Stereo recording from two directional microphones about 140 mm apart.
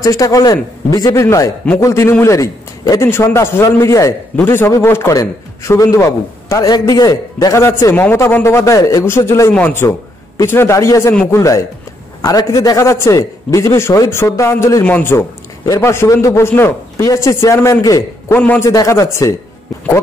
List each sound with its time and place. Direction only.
0.0 s a man's voice: 25° left (ahead or behind)
18.3 s a man's voice: 15° left (ahead or behind)
18.7 s a man's voice: 25° left (ahead or behind)